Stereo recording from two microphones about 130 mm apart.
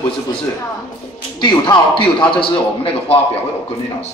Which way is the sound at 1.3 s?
35° left (ahead or behind).